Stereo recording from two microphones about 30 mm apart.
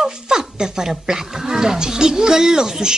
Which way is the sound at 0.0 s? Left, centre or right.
Centre.